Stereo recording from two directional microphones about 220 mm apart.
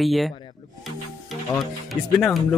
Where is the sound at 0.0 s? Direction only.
Centre (ahead or behind).